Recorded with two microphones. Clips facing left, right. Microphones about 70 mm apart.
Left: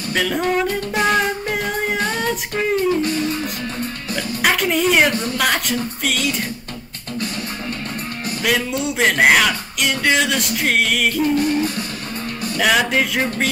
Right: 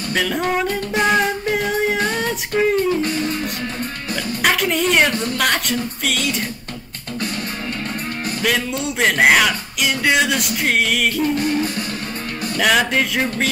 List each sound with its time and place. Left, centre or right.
0.1 s music: centre
3.0 s music: right
4.1 s speech: centre
8.5 s speech: centre